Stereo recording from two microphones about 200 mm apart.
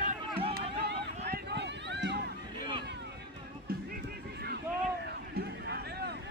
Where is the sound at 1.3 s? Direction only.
60° right (ahead or behind).